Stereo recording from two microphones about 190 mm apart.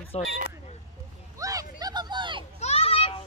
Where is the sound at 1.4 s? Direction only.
20° right (ahead or behind).